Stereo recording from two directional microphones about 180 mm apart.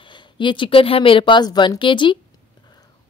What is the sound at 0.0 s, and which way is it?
A woman's voice, 25° left (ahead or behind).